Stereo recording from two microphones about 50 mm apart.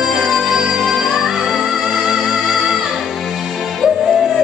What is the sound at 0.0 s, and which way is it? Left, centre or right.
Music, centre.